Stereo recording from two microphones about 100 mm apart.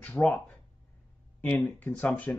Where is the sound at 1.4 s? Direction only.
15° left (ahead or behind).